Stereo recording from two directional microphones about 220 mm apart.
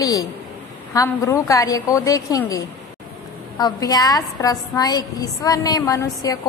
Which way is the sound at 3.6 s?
15° left (ahead or behind).